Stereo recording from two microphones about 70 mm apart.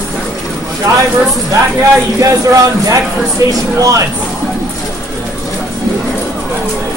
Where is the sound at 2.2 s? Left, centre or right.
Right.